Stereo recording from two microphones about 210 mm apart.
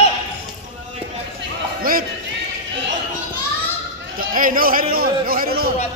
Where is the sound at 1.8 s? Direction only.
45° right (ahead or behind).